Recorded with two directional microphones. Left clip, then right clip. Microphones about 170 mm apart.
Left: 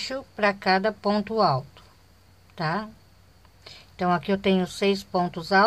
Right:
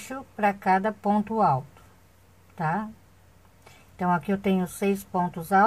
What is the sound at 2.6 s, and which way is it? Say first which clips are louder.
Speech: even; 20° left (ahead or behind).